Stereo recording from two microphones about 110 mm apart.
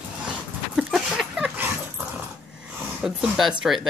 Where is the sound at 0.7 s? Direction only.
5° right (ahead or behind).